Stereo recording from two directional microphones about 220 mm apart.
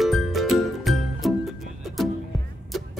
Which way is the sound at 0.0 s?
Centre (ahead or behind).